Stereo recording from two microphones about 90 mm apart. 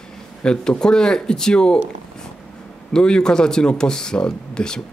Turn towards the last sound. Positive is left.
turn(degrees=10)  # may be behind; listen again after turning